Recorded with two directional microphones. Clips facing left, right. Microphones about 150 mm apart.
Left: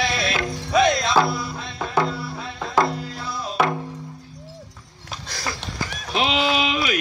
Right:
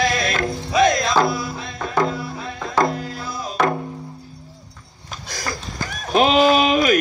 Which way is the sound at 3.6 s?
5° left (ahead or behind).